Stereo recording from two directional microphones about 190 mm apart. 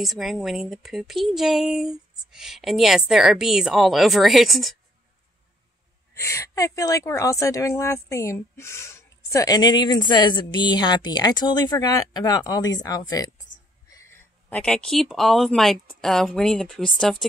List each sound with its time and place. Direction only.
0.0 s speech: centre (ahead or behind)
6.1 s a woman's voice: 15° left (ahead or behind)